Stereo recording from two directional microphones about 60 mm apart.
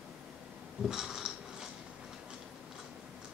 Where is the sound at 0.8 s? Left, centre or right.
Centre.